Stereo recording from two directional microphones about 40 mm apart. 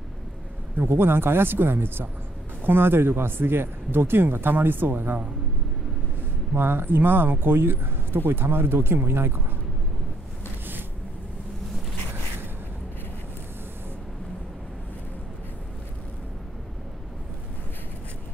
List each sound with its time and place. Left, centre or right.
0.7 s speech: right
6.5 s speech: right